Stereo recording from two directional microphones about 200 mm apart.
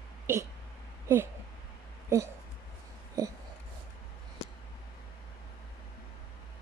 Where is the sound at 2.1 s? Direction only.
15° right (ahead or behind).